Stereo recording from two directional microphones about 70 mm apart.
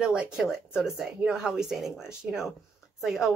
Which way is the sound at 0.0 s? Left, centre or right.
Centre.